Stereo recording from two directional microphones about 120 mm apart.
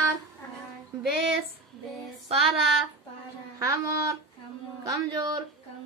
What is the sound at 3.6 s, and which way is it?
Speech, 25° right (ahead or behind).